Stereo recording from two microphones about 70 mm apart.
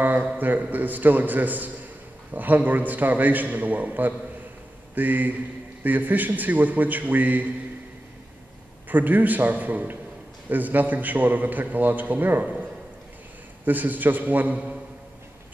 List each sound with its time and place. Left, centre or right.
0.0 s a man's voice: right
8.8 s a man's voice: right
13.7 s a man's voice: right